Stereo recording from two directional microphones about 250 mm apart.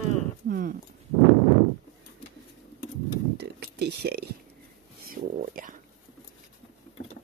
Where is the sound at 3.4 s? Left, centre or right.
Right.